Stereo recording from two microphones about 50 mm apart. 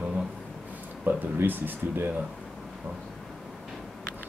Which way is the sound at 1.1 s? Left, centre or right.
Right.